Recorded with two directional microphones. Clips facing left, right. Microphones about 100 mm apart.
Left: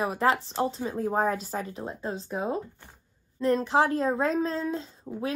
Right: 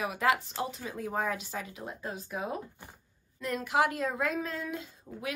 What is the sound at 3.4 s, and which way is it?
A woman's voice, 30° left (ahead or behind).